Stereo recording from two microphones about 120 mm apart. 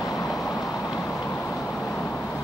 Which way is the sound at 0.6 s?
30° left (ahead or behind).